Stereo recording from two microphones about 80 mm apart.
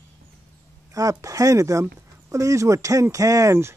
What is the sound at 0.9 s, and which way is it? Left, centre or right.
Speech, right.